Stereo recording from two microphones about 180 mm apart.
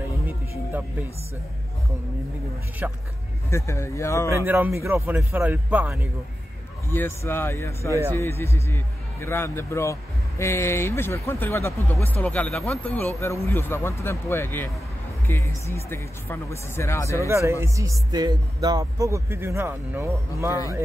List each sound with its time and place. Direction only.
2.8 s a man's voice: 10° right (ahead or behind)
3.4 s speech: 15° left (ahead or behind)
4.5 s a man's voice: 15° right (ahead or behind)
6.9 s speech: 10° left (ahead or behind)
17.2 s a man's voice: 15° right (ahead or behind)